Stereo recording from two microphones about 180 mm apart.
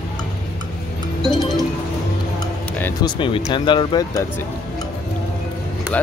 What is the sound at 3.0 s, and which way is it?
Speech, 30° left (ahead or behind).